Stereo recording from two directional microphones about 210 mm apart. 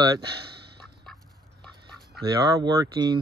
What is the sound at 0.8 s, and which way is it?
Duck, centre (ahead or behind).